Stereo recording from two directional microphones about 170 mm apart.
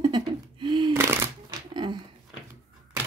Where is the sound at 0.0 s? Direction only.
25° right (ahead or behind).